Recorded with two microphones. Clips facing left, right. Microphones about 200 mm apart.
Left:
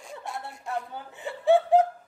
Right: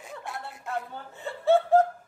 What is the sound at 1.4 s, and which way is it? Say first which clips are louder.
Speech: left 1 dB; 15° left (ahead or behind).